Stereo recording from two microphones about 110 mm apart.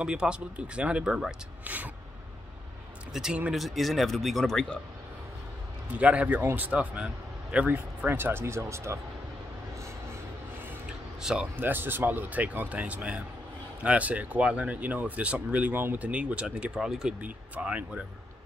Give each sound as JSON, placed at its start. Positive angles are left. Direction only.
{"t": 0.0, "sound": "speech", "side_deg": -10}
{"t": 3.1, "sound": "speech", "side_deg": -5}
{"t": 5.9, "sound": "speech", "side_deg": -10}
{"t": 11.1, "sound": "speech", "side_deg": -5}
{"t": 11.5, "sound": "speech", "side_deg": -20}